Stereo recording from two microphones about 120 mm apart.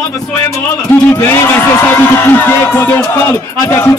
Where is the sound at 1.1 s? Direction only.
20° left (ahead or behind).